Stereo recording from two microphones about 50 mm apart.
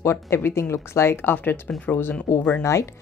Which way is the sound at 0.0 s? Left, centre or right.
Left.